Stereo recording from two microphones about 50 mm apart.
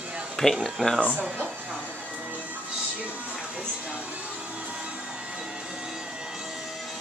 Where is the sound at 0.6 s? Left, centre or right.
Centre.